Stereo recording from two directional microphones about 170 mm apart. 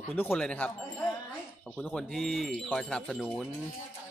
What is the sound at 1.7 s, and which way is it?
Speech, 5° left (ahead or behind).